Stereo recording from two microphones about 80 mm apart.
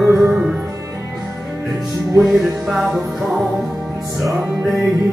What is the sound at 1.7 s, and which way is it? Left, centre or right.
Music, centre.